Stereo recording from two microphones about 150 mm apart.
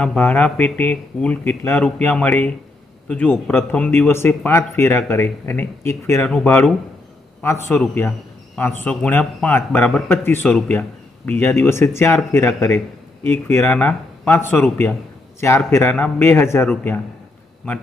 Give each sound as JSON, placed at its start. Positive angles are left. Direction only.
{"t": 0.0, "sound": "speech", "side_deg": 10}
{"t": 10.0, "sound": "speech", "side_deg": 15}